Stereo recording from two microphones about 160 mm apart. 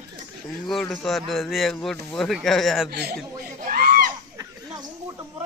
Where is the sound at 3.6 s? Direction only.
65° right (ahead or behind).